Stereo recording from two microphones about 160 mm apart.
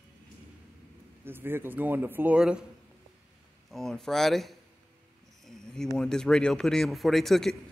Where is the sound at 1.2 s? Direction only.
15° right (ahead or behind).